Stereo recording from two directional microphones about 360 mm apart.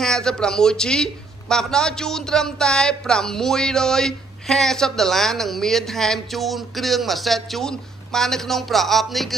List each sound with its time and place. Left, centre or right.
0.0 s speech: centre